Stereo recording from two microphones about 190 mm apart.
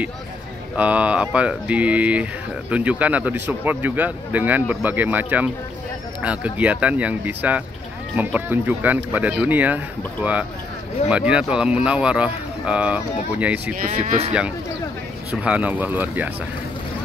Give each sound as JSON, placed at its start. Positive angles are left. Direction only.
{"t": 0.7, "sound": "speech", "side_deg": -5}
{"t": 11.1, "sound": "speech", "side_deg": -5}
{"t": 13.8, "sound": "speech", "side_deg": -35}
{"t": 15.4, "sound": "speech", "side_deg": -10}